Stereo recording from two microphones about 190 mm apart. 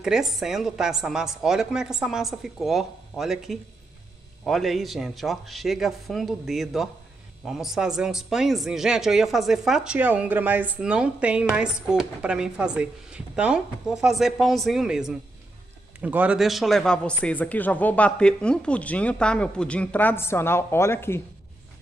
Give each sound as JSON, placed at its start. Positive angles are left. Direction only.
{"t": 0.0, "sound": "a man's voice", "side_deg": 0}